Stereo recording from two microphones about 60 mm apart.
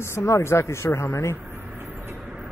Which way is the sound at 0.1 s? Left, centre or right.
Left.